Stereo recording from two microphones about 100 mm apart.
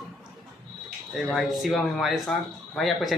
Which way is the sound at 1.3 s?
Centre (ahead or behind).